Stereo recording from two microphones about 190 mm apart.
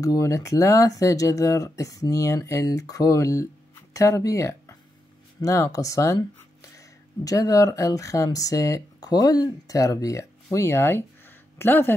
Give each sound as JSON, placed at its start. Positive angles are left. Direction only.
{"t": 0.0, "sound": "speech", "side_deg": 15}